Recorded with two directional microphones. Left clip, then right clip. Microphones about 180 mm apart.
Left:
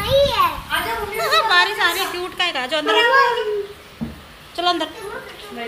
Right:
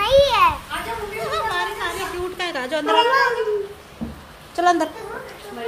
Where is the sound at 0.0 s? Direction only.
10° right (ahead or behind).